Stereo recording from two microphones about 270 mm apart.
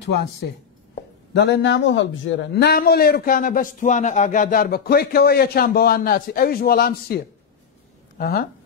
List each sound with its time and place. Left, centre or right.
1.3 s a man's voice: left
8.2 s a man's voice: left